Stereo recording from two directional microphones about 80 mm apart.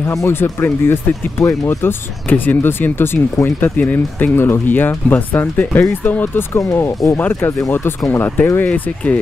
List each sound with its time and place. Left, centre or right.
0.1 s speech: left
6.6 s speech: left; by 9.2 s centre